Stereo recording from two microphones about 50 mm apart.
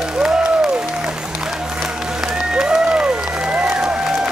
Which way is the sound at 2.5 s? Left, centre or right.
Centre.